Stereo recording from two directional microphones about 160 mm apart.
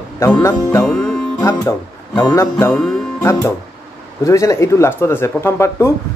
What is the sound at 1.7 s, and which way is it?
Speech, 15° left (ahead or behind).